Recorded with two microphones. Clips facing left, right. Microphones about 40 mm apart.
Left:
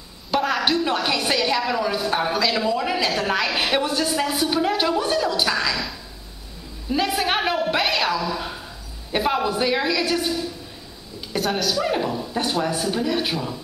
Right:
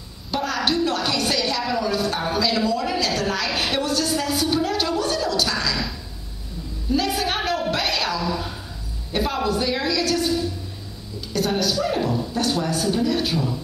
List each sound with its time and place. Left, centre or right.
0.3 s a sound: centre
0.8 s a woman's voice: centre
7.1 s a woman's voice: centre
7.7 s a sound: centre
9.1 s speech: centre
11.4 s speech: centre
11.8 s speech: centre